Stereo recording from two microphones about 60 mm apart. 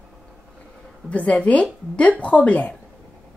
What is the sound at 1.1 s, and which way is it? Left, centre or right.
Speech, left.